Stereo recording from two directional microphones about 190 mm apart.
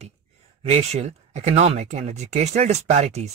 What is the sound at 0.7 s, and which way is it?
Speech, 30° right (ahead or behind).